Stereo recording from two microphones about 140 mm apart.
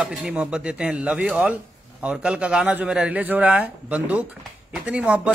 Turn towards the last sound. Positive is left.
turn(degrees=-10)  # may be behind; listen again after turning